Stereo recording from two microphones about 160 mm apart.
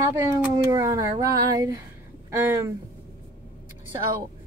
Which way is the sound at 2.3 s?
20° right (ahead or behind).